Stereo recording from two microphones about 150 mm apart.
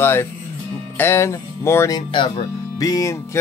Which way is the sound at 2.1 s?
35° left (ahead or behind).